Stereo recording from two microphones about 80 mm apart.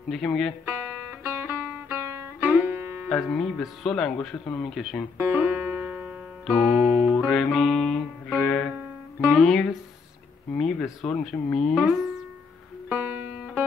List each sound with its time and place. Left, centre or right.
0.1 s speech: centre
0.7 s music: right
3.1 s speech: centre
5.1 s music: right
6.4 s music: centre
7.2 s music: centre
8.3 s music: centre
9.4 s speech: centre
11.7 s speech: centre
12.9 s music: right